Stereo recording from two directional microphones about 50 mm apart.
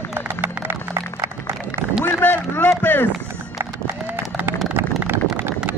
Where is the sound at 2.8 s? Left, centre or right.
Left.